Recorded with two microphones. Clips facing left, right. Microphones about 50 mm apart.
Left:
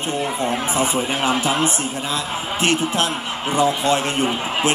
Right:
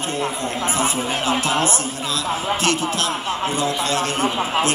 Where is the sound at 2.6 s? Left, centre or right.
Left.